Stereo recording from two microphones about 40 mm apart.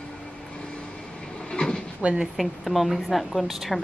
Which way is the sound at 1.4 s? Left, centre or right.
Left.